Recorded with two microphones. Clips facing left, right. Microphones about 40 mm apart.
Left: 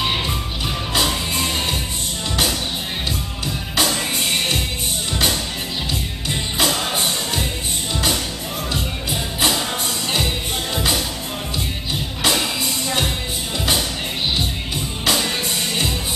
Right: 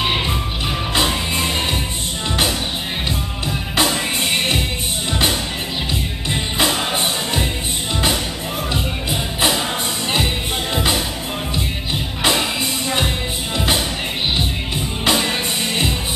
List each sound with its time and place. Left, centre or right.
0.0 s music: centre
3.7 s music: centre
6.3 s music: centre
8.7 s music: centre
12.2 s music: centre
15.0 s music: centre